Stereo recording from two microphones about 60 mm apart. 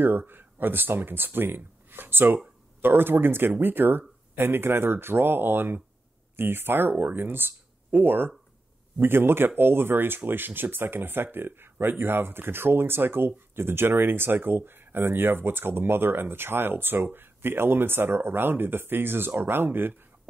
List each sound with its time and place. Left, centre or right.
0.0 s speech: right